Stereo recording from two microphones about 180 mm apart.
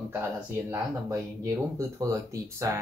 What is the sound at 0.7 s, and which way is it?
Speech, 15° right (ahead or behind).